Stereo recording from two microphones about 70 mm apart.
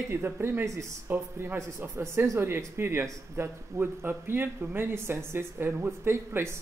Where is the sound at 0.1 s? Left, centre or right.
Right.